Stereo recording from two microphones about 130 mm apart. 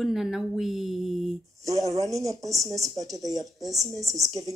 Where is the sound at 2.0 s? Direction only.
25° right (ahead or behind).